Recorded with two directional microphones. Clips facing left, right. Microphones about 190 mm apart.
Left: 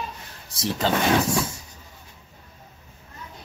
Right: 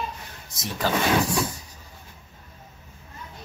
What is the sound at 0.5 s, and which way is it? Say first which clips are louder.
Speech: left 2 dB; 25° left (ahead or behind).